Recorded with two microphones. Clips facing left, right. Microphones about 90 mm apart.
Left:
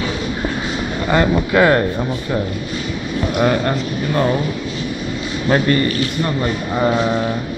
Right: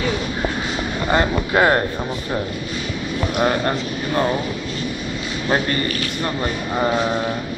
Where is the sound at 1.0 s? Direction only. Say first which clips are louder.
Left 3 dB; 10° right (ahead or behind).